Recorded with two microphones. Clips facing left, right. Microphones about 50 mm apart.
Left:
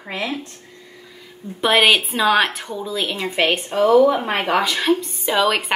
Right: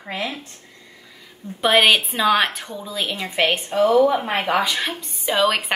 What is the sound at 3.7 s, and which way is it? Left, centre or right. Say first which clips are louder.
Speech: left 2 dB; left.